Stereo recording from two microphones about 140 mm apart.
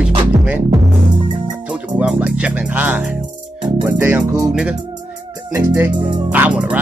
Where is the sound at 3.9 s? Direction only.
10° right (ahead or behind).